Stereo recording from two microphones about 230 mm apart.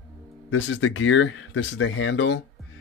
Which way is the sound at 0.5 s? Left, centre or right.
Left.